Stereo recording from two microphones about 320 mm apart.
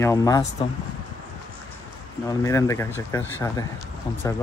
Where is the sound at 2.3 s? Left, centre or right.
Centre.